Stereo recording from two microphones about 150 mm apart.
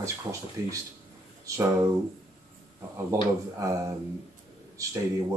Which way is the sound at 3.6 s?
20° right (ahead or behind).